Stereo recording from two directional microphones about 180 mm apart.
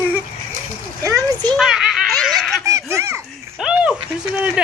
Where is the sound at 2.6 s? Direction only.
15° right (ahead or behind).